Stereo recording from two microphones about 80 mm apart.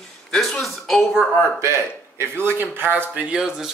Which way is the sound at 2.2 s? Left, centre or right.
Right.